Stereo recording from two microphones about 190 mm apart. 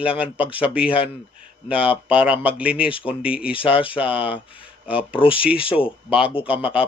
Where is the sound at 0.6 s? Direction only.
5° right (ahead or behind).